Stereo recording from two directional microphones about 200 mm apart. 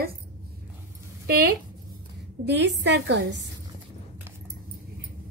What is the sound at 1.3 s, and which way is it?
Speech, 50° right (ahead or behind).